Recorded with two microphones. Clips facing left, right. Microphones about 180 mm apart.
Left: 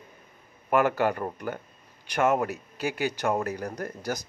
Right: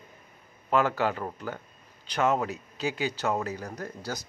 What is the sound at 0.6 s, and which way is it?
Speech, 15° left (ahead or behind).